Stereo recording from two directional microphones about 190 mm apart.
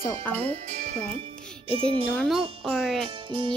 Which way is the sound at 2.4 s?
30° right (ahead or behind).